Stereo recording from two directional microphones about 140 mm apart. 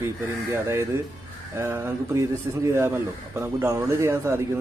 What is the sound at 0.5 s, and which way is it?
A man's voice, 20° right (ahead or behind).